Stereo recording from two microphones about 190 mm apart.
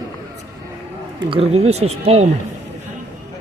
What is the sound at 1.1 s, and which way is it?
Speech, 30° right (ahead or behind).